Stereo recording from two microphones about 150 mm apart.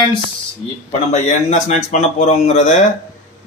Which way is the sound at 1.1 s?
50° left (ahead or behind).